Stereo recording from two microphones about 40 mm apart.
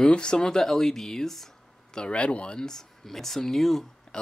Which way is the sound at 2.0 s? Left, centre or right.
Left.